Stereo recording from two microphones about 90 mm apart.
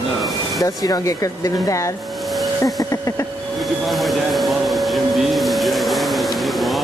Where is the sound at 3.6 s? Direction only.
Centre (ahead or behind).